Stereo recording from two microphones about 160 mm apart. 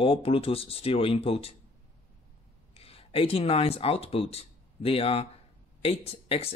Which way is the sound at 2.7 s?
35° left (ahead or behind).